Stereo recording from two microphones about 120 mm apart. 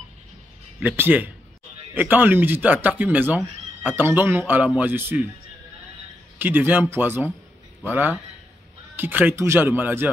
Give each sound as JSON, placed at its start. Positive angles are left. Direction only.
{"t": 0.7, "sound": "speech", "side_deg": -15}
{"t": 6.3, "sound": "speech", "side_deg": -15}